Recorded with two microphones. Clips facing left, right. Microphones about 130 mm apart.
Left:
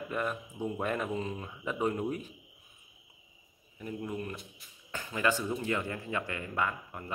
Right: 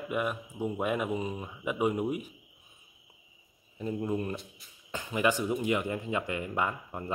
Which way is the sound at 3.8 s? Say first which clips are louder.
Right 5 dB; 25° right (ahead or behind).